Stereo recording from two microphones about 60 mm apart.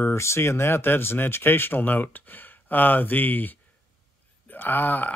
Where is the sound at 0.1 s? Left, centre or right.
Left.